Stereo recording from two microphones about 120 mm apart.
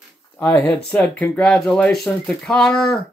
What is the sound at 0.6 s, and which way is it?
Speech, 10° left (ahead or behind).